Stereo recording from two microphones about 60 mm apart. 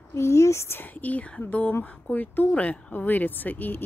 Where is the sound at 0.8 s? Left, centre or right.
Left.